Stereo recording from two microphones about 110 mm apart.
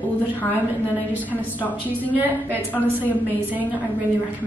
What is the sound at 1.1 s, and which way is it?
Speech, 15° right (ahead or behind).